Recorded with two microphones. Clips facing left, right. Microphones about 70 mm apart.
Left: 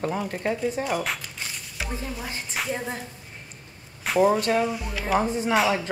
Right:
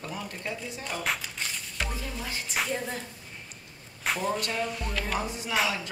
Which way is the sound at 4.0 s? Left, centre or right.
Centre.